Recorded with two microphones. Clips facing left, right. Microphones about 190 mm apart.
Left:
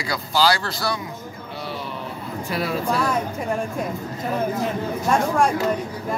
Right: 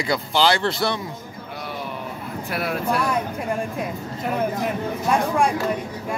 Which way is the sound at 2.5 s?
60° right (ahead or behind).